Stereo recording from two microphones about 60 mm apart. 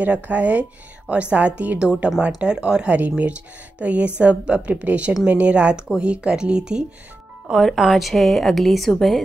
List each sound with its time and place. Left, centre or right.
0.0 s speech: right
7.5 s a woman's voice: centre